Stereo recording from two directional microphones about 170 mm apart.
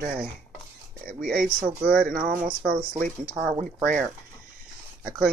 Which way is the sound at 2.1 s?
55° right (ahead or behind).